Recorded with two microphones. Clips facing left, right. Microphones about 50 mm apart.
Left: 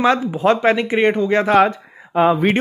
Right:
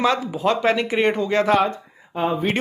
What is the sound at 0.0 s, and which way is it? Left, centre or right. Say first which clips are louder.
Speech: left 4 dB; left.